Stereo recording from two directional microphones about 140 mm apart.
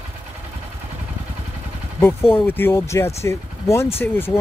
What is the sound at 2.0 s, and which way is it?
Speech, 15° left (ahead or behind).